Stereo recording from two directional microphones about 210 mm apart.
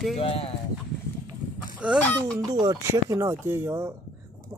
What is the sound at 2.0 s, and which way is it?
Speech, 5° left (ahead or behind).